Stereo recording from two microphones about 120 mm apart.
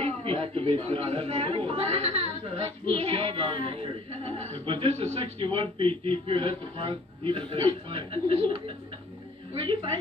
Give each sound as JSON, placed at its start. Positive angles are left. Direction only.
{"t": 0.0, "sound": "a woman's voice", "side_deg": -55}